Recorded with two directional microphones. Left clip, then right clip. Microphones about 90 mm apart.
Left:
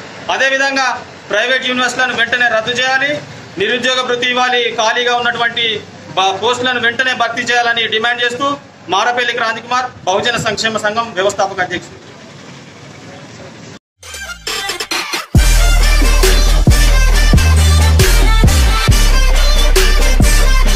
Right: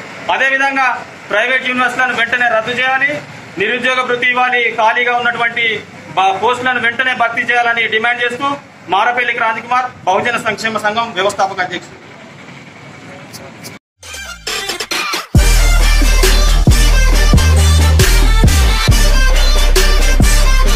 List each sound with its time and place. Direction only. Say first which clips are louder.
0.3 s a man's voice: even; 35° left (ahead or behind)
14.2 s music: left 1 dB; 5° left (ahead or behind)